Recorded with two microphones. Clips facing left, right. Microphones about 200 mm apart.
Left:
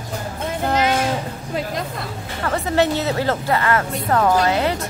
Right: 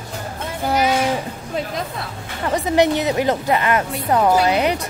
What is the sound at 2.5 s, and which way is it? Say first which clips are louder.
A woman's voice: right 2 dB; 15° right (ahead or behind).